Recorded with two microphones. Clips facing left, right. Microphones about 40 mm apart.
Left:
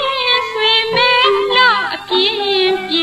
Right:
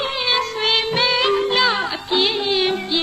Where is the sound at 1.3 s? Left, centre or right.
Left.